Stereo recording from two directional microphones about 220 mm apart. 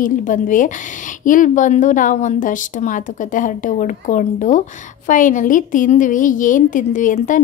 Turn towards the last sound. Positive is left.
turn(degrees=35)  # may be behind; listen again after turning